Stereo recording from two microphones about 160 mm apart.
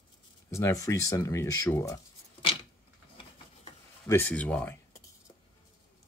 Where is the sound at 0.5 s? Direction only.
20° left (ahead or behind).